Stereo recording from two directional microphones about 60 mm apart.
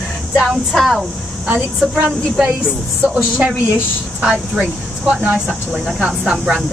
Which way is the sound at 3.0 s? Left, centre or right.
Right.